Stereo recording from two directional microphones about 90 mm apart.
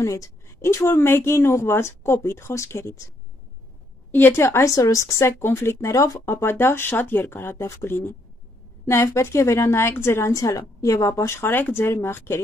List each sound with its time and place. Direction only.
0.0 s speech: 35° left (ahead or behind)
4.1 s speech: 25° left (ahead or behind)